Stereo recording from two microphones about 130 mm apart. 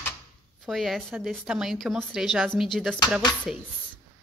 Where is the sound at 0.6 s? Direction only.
Centre (ahead or behind).